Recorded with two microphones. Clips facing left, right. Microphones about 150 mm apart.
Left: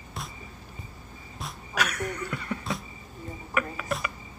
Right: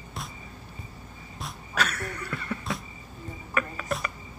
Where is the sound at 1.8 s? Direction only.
15° left (ahead or behind).